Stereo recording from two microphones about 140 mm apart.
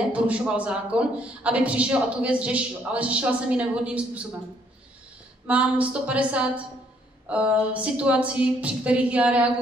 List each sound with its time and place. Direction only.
0.1 s a man's voice: 10° right (ahead or behind)
5.5 s a man's voice: 10° right (ahead or behind)